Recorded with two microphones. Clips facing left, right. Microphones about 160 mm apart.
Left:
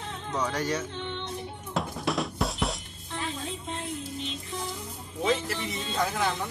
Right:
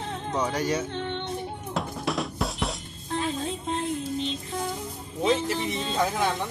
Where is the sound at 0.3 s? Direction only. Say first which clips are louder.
Right 2 dB; 15° right (ahead or behind).